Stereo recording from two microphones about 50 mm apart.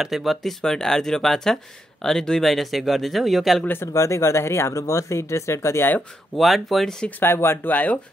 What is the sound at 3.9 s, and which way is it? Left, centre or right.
Speech, left.